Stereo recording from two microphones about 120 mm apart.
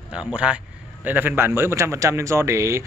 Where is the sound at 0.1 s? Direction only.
10° right (ahead or behind).